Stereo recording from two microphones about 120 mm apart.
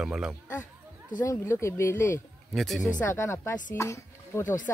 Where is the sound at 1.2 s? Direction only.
25° left (ahead or behind).